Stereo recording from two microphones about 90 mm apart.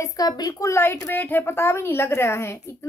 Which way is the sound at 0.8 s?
25° left (ahead or behind).